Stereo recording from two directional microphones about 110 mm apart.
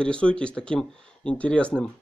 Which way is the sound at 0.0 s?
10° left (ahead or behind).